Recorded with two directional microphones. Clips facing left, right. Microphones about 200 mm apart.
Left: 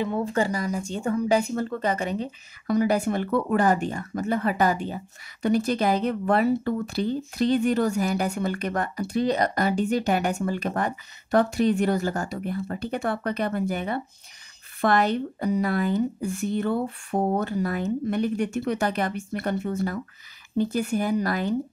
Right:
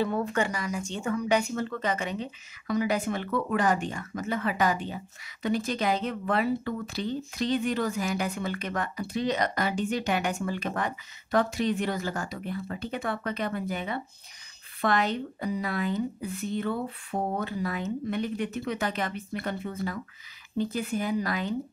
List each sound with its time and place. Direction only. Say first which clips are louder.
0.2 s speech: left 4 dB; 35° left (ahead or behind)